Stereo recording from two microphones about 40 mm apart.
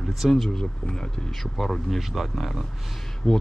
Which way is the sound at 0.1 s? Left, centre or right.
Centre.